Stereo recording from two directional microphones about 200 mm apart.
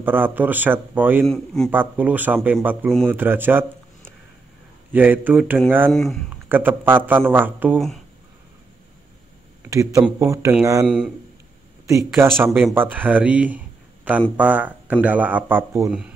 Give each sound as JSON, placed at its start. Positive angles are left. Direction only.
{"t": 0.0, "sound": "speech", "side_deg": -10}
{"t": 1.2, "sound": "a man's voice", "side_deg": 5}
{"t": 1.7, "sound": "speech", "side_deg": -10}
{"t": 5.9, "sound": "a man's voice", "side_deg": 0}
{"t": 6.5, "sound": "speech", "side_deg": -10}
{"t": 9.6, "sound": "a sound", "side_deg": -15}
{"t": 10.1, "sound": "speech", "side_deg": -15}
{"t": 11.9, "sound": "speech", "side_deg": -15}
{"t": 12.3, "sound": "a man's voice", "side_deg": 5}
{"t": 12.5, "sound": "speech", "side_deg": -10}